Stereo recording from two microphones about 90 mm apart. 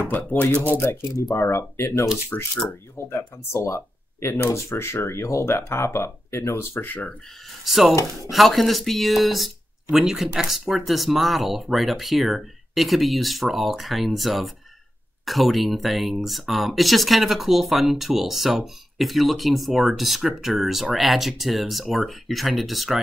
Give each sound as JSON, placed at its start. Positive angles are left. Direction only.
{"t": 0.0, "sound": "speech", "side_deg": 20}
{"t": 2.3, "sound": "speech", "side_deg": 20}
{"t": 7.6, "sound": "speech", "side_deg": -5}